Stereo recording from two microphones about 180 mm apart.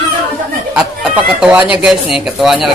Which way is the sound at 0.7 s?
5° right (ahead or behind).